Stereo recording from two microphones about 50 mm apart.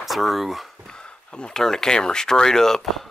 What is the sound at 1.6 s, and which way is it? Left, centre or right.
Speech, centre.